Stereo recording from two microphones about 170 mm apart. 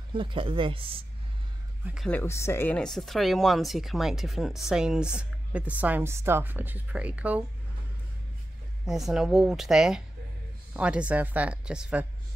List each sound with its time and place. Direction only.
0.1 s speech: 30° right (ahead or behind)
2.0 s speech: 10° left (ahead or behind); by 7.4 s 10° right (ahead or behind)
8.8 s speech: centre (ahead or behind)